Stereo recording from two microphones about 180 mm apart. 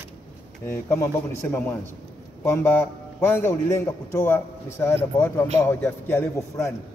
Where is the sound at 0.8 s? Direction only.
15° left (ahead or behind).